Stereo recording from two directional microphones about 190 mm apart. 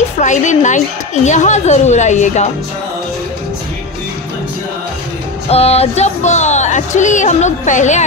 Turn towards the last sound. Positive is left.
turn(degrees=40)  # may be behind; listen again after turning